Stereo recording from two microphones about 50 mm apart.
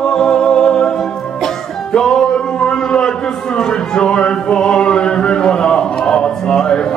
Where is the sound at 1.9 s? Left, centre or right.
Centre.